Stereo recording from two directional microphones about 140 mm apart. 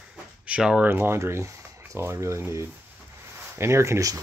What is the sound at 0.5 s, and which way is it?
Speech, 5° right (ahead or behind).